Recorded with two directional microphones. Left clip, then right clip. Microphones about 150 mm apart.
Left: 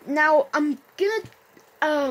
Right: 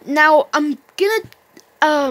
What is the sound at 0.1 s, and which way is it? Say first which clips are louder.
Speech: right 6 dB; 25° right (ahead or behind).